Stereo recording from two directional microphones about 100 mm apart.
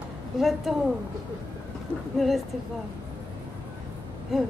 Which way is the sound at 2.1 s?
Centre (ahead or behind).